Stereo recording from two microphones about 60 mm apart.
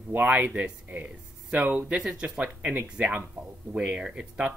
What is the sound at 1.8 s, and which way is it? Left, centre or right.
Speech, centre.